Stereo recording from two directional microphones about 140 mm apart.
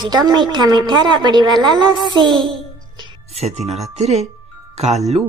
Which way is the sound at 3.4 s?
50° right (ahead or behind).